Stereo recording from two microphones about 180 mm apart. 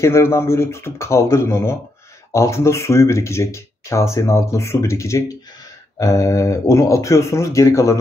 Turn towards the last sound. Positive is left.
turn(degrees=15)  # may be behind; listen again after turning